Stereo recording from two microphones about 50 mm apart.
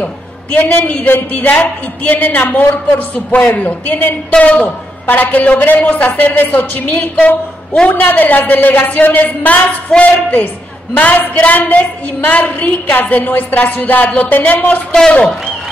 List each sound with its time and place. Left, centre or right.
0.6 s a woman's voice: left
9.8 s speech: left
10.1 s a woman's voice: left